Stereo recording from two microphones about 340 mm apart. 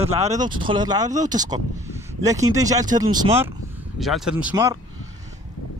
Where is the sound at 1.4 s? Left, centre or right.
Centre.